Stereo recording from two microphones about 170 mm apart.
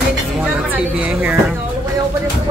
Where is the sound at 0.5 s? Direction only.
5° right (ahead or behind).